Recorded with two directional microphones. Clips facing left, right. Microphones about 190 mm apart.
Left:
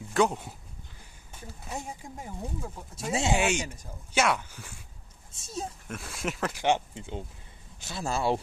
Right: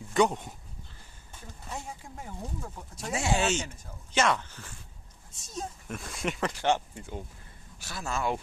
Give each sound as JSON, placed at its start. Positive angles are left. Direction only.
{"t": 0.1, "sound": "speech", "side_deg": 0}
{"t": 1.3, "sound": "a sound", "side_deg": 5}
{"t": 1.7, "sound": "speech", "side_deg": 15}
{"t": 3.1, "sound": "speech", "side_deg": 25}
{"t": 3.3, "sound": "speech", "side_deg": 10}
{"t": 6.6, "sound": "speech", "side_deg": 20}